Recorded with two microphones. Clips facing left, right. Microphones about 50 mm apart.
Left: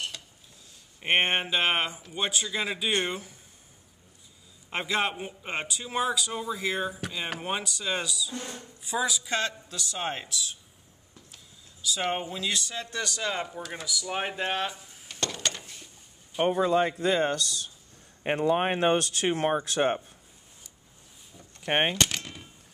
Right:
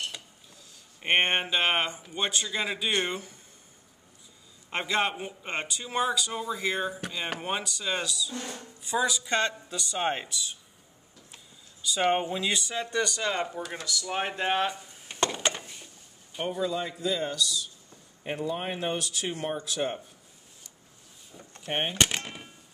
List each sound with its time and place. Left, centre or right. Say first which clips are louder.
1.0 s a man's voice: even; centre
4.6 s a man's voice: even; centre
11.8 s a man's voice: right 4 dB; centre
15.0 s a sound: right 4 dB; centre
16.4 s speech: left 6 dB; left
21.6 s speech: left 5 dB; left
21.9 s a sound: right 1 dB; right